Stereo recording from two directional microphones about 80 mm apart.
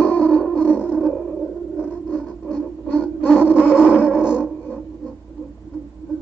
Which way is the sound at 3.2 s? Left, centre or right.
Left.